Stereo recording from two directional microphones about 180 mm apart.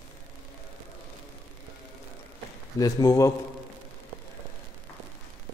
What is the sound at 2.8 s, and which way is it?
Speech, 20° left (ahead or behind).